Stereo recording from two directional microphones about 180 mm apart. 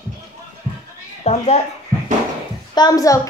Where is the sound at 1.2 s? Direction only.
40° left (ahead or behind).